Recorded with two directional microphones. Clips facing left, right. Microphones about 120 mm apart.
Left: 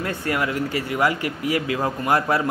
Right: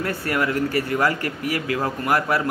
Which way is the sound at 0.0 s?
20° left (ahead or behind).